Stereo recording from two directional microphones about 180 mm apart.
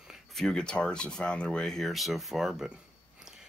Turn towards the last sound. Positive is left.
turn(degrees=-5)  # may be behind; listen again after turning